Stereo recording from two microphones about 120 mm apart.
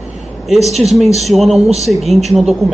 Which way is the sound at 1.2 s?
Centre (ahead or behind).